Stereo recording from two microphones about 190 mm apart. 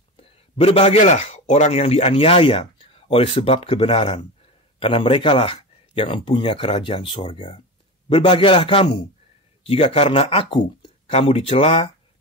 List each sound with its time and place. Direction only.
0.2 s a man's voice: 30° left (ahead or behind)